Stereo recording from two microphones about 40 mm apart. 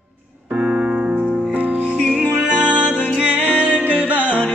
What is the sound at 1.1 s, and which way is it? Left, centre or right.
Music, right.